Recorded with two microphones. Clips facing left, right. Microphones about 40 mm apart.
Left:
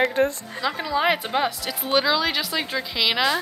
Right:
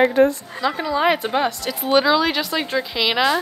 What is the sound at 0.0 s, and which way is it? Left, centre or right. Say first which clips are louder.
Speech: right 6 dB; right.